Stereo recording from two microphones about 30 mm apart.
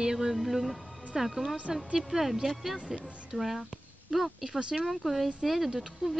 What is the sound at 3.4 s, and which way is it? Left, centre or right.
Speech, centre.